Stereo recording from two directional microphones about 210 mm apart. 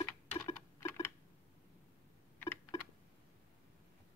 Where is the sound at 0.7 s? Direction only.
10° left (ahead or behind).